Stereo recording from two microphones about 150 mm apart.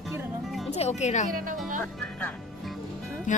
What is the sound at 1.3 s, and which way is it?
Speech, 65° right (ahead or behind).